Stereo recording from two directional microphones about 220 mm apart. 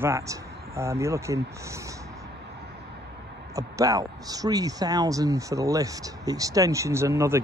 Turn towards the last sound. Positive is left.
turn(degrees=-10)  # may be behind; listen again after turning